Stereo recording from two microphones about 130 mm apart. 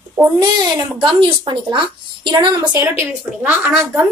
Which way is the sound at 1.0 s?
40° right (ahead or behind).